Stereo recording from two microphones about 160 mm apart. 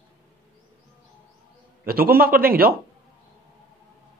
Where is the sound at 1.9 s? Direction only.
70° right (ahead or behind).